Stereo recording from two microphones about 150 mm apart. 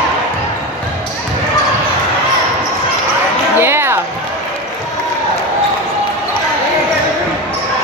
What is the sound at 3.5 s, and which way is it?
Music, 15° right (ahead or behind).